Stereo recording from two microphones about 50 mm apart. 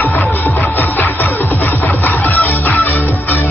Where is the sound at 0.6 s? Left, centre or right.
Left.